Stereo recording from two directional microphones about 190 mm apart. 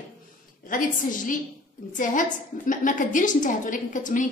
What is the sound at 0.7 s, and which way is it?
A woman's voice, 45° left (ahead or behind).